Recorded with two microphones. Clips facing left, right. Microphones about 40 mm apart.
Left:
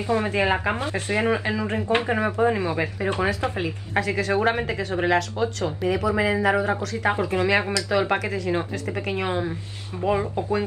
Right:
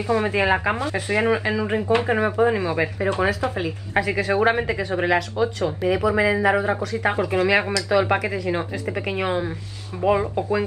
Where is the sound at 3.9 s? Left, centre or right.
Centre.